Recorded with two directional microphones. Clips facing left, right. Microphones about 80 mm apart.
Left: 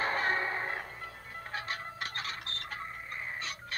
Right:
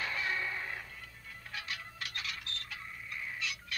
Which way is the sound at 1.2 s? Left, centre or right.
Left.